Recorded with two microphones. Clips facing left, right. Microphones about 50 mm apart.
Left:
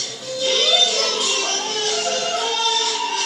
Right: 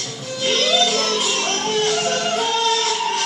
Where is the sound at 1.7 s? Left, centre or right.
Right.